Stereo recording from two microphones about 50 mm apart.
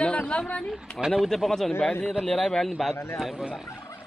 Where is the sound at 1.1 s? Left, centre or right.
Centre.